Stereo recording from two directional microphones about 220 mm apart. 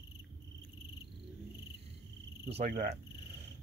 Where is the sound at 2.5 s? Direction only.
40° right (ahead or behind).